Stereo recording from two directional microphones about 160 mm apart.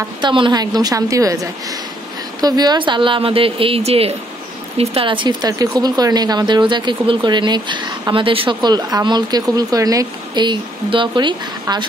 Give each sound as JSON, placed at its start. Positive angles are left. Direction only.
{"t": 0.2, "sound": "speech", "side_deg": -30}